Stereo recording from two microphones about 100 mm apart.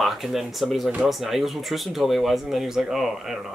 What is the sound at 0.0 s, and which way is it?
Speech, centre (ahead or behind).